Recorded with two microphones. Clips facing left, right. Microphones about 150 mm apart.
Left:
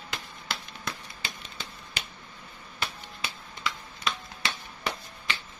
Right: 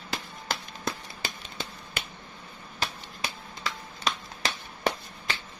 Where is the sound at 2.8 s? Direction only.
40° right (ahead or behind).